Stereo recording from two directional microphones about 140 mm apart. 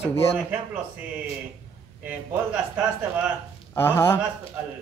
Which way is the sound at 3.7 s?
20° left (ahead or behind).